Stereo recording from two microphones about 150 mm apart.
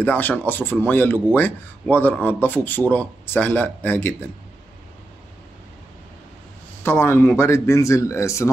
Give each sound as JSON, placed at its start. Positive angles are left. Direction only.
{"t": 0.0, "sound": "a man's voice", "side_deg": 10}
{"t": 6.8, "sound": "a man's voice", "side_deg": 15}